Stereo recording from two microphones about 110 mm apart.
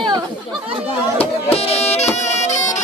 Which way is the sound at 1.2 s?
65° left (ahead or behind).